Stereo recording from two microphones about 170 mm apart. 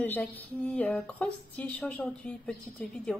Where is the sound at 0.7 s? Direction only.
5° left (ahead or behind).